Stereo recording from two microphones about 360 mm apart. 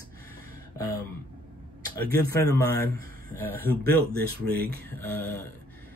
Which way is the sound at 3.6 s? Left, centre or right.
Right.